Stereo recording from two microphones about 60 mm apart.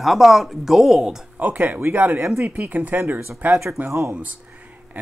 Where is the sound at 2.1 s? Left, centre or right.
Right.